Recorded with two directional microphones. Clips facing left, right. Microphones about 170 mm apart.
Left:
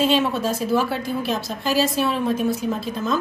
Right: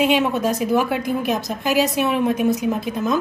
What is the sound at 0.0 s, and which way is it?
A woman's voice, 15° right (ahead or behind).